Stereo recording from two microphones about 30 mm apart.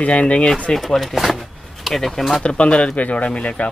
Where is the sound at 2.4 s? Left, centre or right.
Left.